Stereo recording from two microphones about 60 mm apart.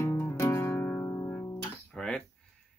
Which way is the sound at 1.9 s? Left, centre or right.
Centre.